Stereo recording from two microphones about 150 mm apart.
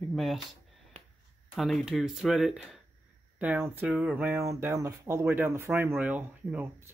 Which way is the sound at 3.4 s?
15° right (ahead or behind).